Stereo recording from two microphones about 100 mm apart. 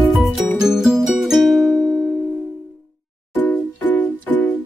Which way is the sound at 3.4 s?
15° left (ahead or behind).